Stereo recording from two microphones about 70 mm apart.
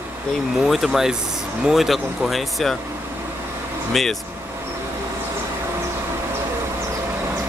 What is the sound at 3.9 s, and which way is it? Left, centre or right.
Speech, centre.